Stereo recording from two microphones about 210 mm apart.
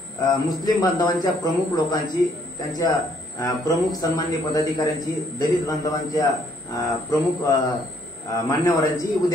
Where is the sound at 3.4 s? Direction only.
15° left (ahead or behind).